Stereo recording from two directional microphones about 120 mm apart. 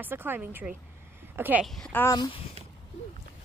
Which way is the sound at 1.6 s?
5° left (ahead or behind).